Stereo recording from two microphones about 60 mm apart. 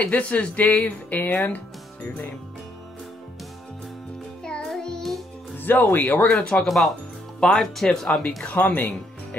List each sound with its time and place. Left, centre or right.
0.0 s speech: left
4.5 s music: centre
5.6 s speech: left
6.6 s speech: centre
7.3 s speech: centre
8.5 s speech: left